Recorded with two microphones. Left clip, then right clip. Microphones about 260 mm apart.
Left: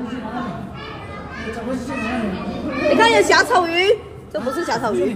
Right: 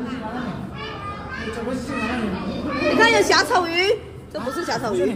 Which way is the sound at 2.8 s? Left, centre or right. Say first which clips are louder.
Left 3 dB; centre.